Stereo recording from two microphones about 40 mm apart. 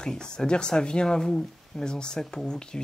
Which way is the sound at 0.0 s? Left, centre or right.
Centre.